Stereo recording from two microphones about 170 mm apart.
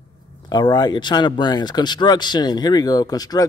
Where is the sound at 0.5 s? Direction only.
25° left (ahead or behind).